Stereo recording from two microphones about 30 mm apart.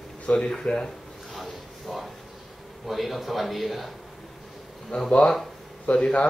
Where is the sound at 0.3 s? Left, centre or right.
Left.